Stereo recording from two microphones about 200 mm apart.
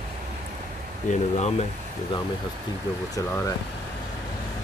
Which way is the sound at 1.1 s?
35° left (ahead or behind).